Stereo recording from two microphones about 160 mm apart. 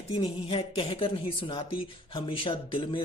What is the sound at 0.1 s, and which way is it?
A man's voice, 25° left (ahead or behind).